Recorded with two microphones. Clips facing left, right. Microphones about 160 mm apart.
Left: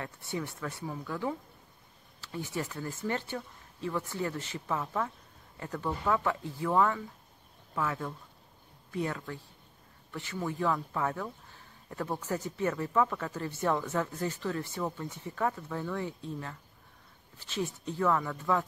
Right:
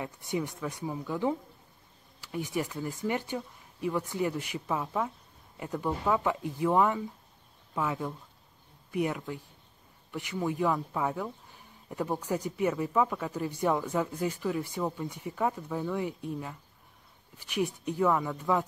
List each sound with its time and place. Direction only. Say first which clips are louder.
0.0 s speech: right 4 dB; 15° right (ahead or behind)